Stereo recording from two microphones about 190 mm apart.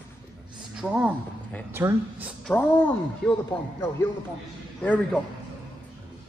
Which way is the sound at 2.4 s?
10° left (ahead or behind).